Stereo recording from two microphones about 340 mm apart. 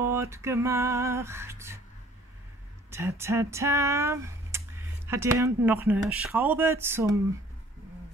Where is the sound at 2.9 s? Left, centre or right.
Centre.